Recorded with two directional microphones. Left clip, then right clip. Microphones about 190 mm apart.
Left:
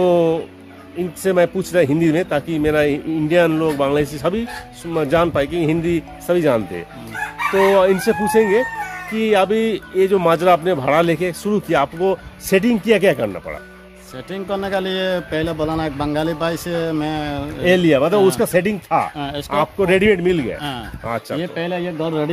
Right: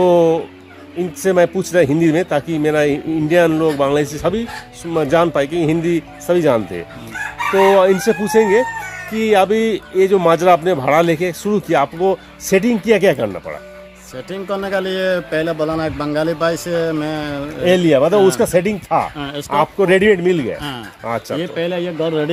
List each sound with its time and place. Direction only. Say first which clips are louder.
0.0 s a sound: right 3 dB; 15° right (ahead or behind)
1.2 s speech: right 2 dB; 15° right (ahead or behind)
7.7 s speech: right 2 dB; 15° right (ahead or behind)
14.1 s speech: right 1 dB; 20° left (ahead or behind)
17.6 s speech: right 2 dB; 15° right (ahead or behind)
19.1 s a man's voice: even; 20° left (ahead or behind)
19.5 s speech: right 3 dB; 20° right (ahead or behind)
21.4 s a man's voice: right 3 dB; 20° left (ahead or behind)